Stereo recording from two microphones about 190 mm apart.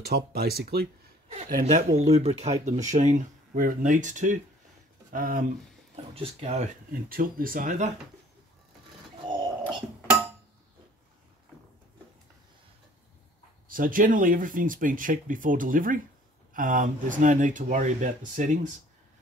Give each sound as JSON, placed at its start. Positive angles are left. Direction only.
{"t": 0.0, "sound": "speech", "side_deg": -55}
{"t": 1.6, "sound": "speech", "side_deg": -40}
{"t": 5.9, "sound": "speech", "side_deg": -30}
{"t": 13.7, "sound": "speech", "side_deg": -45}